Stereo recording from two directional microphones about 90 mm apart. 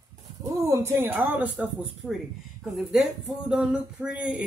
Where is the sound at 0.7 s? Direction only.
25° right (ahead or behind).